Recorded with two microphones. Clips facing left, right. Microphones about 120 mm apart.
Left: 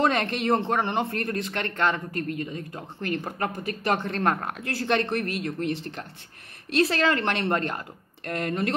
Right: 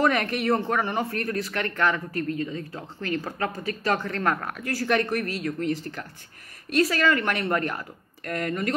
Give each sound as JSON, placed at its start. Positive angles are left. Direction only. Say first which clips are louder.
{"t": 0.0, "sound": "speech", "louder": "right 1 dB", "side_deg": 25}